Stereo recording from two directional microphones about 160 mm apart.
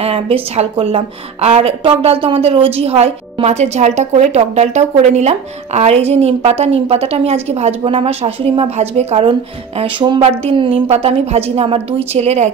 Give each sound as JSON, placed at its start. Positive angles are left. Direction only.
{"t": 0.0, "sound": "a woman's voice", "side_deg": -40}